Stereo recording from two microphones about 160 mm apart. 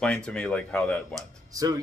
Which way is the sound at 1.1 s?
20° right (ahead or behind).